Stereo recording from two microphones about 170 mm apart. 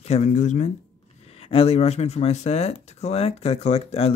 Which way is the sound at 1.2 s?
35° left (ahead or behind).